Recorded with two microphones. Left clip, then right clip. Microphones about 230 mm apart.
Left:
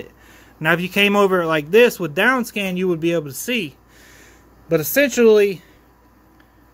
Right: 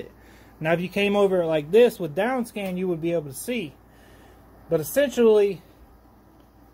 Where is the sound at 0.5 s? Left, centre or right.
Centre.